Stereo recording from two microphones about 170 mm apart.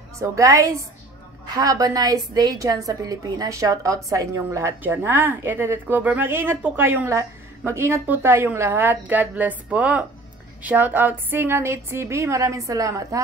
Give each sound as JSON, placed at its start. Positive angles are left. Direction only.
{"t": 0.2, "sound": "a woman's voice", "side_deg": -20}